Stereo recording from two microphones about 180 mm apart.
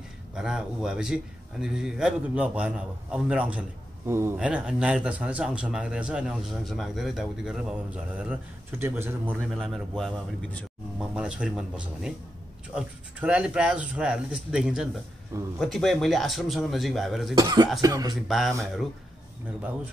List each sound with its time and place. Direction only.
0.4 s a man's voice: 5° right (ahead or behind)
17.4 s speech: 20° right (ahead or behind)